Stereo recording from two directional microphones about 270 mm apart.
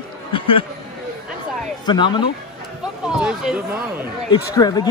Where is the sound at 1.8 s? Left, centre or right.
Centre.